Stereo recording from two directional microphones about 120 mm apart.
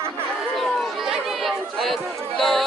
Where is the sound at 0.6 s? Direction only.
Centre (ahead or behind).